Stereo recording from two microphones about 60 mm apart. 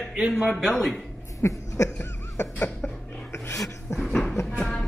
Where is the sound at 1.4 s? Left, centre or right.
Left.